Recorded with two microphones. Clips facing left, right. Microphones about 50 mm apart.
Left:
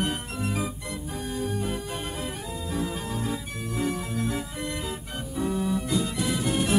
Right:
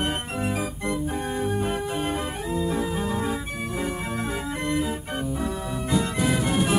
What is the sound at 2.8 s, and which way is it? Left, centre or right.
Organ, right.